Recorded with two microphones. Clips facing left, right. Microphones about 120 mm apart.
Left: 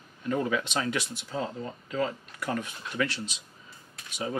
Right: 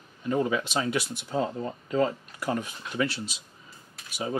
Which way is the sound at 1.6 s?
30° right (ahead or behind).